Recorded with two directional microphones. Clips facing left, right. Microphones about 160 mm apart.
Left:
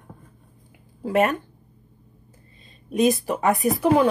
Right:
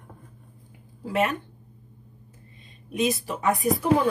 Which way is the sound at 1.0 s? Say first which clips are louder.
Left 5 dB; 55° left (ahead or behind).